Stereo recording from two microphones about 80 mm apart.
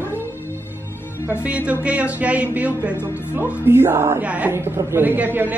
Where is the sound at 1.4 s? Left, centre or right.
Centre.